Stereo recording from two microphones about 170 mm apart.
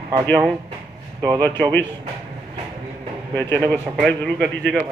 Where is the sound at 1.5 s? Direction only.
10° left (ahead or behind).